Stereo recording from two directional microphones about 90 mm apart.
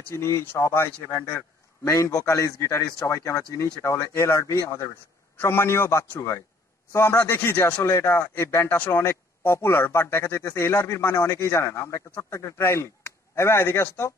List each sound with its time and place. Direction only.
0.1 s speech: 30° left (ahead or behind)